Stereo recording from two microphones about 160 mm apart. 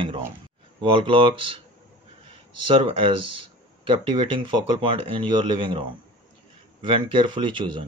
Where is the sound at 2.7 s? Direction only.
30° right (ahead or behind).